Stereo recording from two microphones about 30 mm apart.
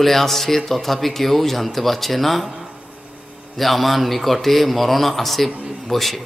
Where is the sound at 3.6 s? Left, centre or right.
Centre.